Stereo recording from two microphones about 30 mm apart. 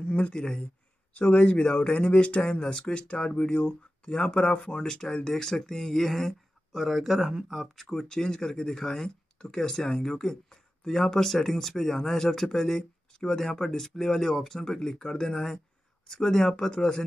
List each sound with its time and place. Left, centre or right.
0.0 s speech: left
1.1 s speech: left
2.0 s speech: left; by 6.3 s centre
6.7 s speech: centre
7.8 s speech: centre